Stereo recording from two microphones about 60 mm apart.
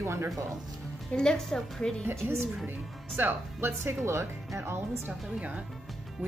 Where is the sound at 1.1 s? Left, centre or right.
Centre.